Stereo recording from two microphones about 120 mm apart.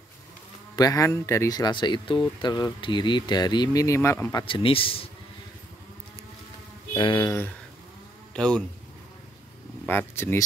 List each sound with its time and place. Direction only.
0.7 s speech: 30° left (ahead or behind)
4.5 s speech: 50° left (ahead or behind)
6.9 s speech: 40° left (ahead or behind)
7.2 s speech: 20° left (ahead or behind)
9.8 s speech: 20° left (ahead or behind)